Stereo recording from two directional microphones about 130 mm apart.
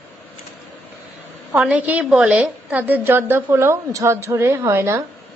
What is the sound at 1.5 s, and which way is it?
A woman's voice, 10° right (ahead or behind).